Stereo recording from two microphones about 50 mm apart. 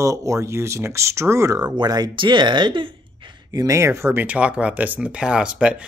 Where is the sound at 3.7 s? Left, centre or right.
Right.